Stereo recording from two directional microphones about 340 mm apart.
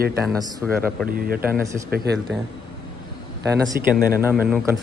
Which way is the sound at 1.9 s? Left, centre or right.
Right.